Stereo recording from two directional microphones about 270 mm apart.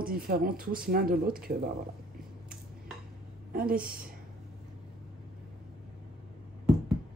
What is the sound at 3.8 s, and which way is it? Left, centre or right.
Speech, right.